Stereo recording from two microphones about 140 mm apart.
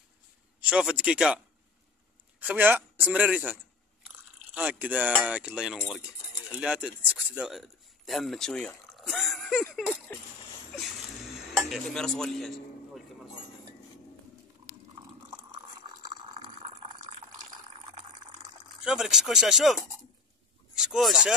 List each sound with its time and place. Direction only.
0.6 s a man's voice: 10° right (ahead or behind)
2.4 s a man's voice: 10° right (ahead or behind)
4.0 s chewing: 10° right (ahead or behind)
5.1 s speech: 5° right (ahead or behind)
11.5 s speech: centre (ahead or behind)
16.3 s a sound: 45° right (ahead or behind)
17.9 s water: 30° right (ahead or behind)
18.9 s speech: 5° right (ahead or behind)